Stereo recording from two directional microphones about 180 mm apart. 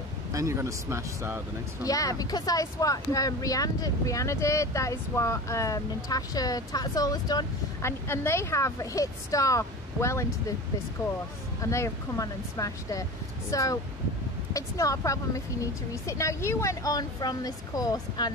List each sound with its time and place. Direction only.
0.3 s speech: 15° right (ahead or behind)
1.9 s speech: 20° left (ahead or behind)
11.6 s speech: 15° left (ahead or behind)